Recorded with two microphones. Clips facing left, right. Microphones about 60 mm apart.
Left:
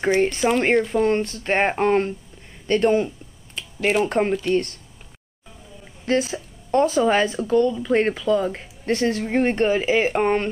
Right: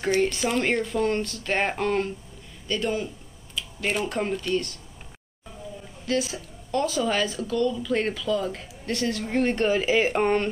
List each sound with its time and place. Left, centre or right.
0.0 s speech: left
3.6 s finger snapping: left
4.0 s speech: left
4.3 s speech: centre
6.0 s speech: left; by 10.5 s centre